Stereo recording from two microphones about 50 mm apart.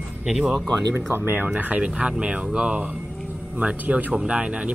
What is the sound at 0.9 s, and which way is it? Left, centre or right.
Speech, right.